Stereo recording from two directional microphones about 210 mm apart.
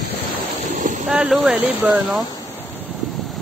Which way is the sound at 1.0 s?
5° right (ahead or behind).